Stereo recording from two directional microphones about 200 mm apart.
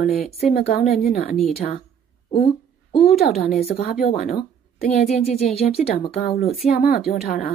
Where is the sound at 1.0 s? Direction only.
30° left (ahead or behind).